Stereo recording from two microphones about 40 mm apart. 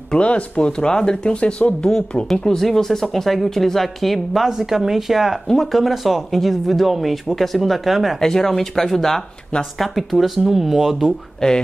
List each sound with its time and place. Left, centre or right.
0.1 s speech: left; by 4.5 s centre
4.5 s speech: centre
8.2 s speech: centre
11.3 s speech: centre